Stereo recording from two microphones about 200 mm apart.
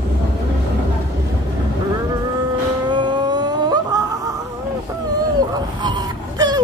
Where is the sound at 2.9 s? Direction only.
20° right (ahead or behind).